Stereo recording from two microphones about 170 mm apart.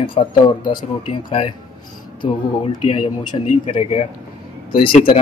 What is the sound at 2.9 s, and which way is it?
Speech, 35° left (ahead or behind).